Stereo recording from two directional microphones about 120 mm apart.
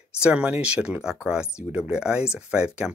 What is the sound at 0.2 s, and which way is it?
Speech, 10° right (ahead or behind).